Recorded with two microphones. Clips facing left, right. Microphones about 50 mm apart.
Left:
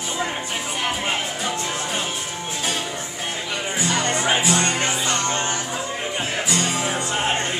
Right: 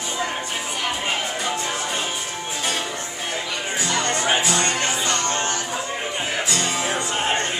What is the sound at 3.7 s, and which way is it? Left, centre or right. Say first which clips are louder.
Music: left 1 dB; centre.